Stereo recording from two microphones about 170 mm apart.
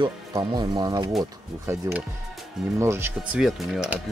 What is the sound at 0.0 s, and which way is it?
Speech, 25° right (ahead or behind).